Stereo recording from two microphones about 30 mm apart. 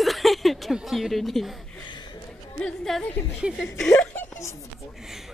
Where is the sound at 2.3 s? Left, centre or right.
Left.